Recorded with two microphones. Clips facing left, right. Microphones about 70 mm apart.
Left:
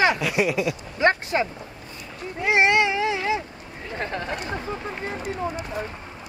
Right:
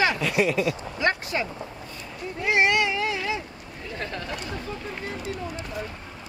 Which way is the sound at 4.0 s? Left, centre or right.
Left.